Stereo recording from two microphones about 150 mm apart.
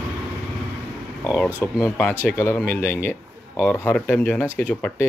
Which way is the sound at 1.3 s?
5° left (ahead or behind).